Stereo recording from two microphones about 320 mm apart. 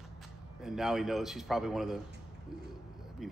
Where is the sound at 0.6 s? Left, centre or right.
Centre.